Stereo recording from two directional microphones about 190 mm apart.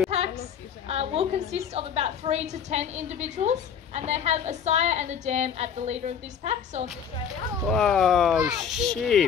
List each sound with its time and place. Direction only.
0.8 s a woman's voice: 35° right (ahead or behind)
7.6 s speech: centre (ahead or behind)